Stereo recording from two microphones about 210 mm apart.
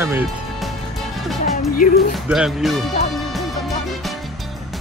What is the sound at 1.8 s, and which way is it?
Speech, 40° left (ahead or behind).